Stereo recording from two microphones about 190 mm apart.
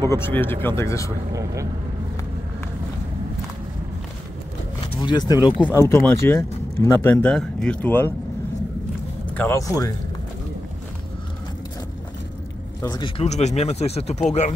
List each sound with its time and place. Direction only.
0.0 s speech: 15° left (ahead or behind)
1.3 s speech: 15° right (ahead or behind)
4.9 s speech: 25° left (ahead or behind)
5.7 s speech: 15° left (ahead or behind)
9.3 s speech: 10° left (ahead or behind)
12.8 s speech: 20° left (ahead or behind)
13.2 s speech: 35° left (ahead or behind)